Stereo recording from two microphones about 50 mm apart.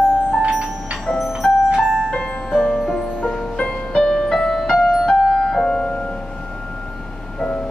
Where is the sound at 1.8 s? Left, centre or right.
Centre.